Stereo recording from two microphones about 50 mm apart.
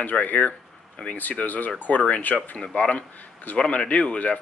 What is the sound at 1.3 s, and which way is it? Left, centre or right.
Speech, left.